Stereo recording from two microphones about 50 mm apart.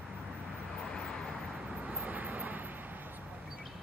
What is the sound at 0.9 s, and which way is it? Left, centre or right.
Vehicle, centre.